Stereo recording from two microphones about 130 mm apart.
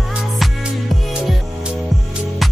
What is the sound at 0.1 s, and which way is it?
Music, centre (ahead or behind).